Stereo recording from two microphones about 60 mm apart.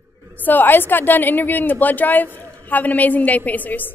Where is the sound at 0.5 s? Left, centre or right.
Left.